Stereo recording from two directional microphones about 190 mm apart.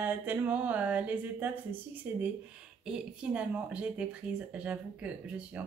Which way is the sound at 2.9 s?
5° right (ahead or behind).